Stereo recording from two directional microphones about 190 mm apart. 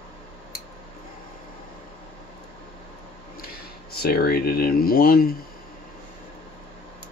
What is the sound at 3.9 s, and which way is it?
Speech, 55° left (ahead or behind).